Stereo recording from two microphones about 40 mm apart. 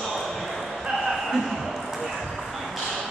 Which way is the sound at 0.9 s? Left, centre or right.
Centre.